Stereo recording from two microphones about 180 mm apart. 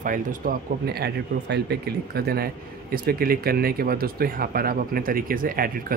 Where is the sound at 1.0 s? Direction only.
65° right (ahead or behind).